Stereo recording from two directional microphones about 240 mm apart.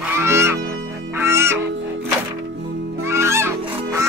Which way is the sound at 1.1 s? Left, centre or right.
Centre.